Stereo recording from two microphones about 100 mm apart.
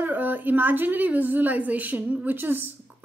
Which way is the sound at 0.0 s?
20° right (ahead or behind).